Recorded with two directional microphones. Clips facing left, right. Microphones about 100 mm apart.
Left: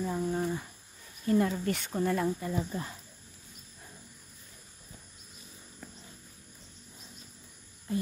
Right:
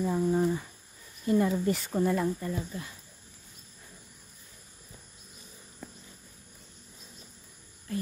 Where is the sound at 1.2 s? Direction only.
5° right (ahead or behind).